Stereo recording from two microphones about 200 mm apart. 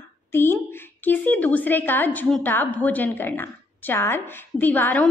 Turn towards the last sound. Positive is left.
turn(degrees=10)  # may be behind; listen again after turning